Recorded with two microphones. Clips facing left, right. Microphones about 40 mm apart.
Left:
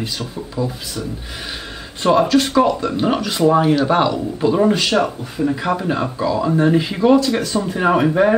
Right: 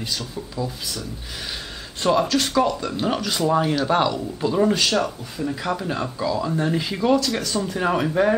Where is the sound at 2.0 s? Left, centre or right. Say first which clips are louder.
Left 5 dB; centre.